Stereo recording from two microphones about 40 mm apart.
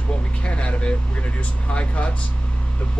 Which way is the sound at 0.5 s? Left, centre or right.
Left.